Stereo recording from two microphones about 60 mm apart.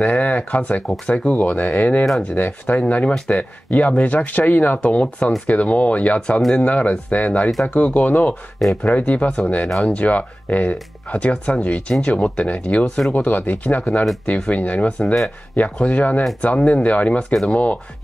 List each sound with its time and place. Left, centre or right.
0.0 s speech: left
4.7 s speech: centre
9.7 s speech: centre
9.9 s speech: left
14.3 s speech: centre
14.6 s speech: left
17.3 s speech: centre